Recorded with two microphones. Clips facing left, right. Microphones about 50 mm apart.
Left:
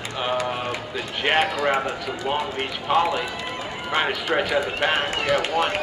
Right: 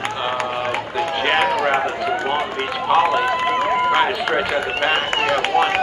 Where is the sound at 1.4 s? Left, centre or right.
Right.